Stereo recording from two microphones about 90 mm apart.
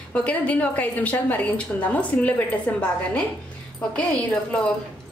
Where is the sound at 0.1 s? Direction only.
15° left (ahead or behind).